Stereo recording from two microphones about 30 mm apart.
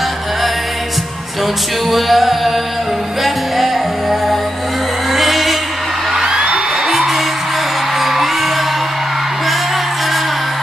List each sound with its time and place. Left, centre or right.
1.9 s music: centre
6.1 s music: right
6.9 s music: centre